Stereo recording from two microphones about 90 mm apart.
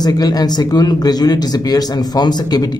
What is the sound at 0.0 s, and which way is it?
A man's voice, 45° left (ahead or behind).